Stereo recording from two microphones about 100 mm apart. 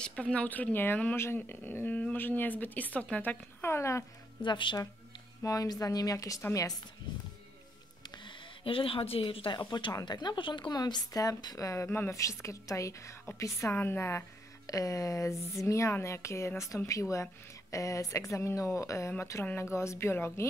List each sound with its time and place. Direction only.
0.0 s speech: 10° left (ahead or behind); by 4.0 s 25° left (ahead or behind)
4.4 s speech: 55° left (ahead or behind)
5.4 s a woman's voice: 35° left (ahead or behind)
8.0 s a woman's voice: 50° left (ahead or behind); by 14.2 s 25° left (ahead or behind)
14.7 s a woman's voice: 35° left (ahead or behind)